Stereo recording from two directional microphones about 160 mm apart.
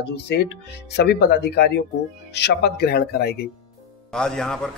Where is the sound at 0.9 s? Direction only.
90° left.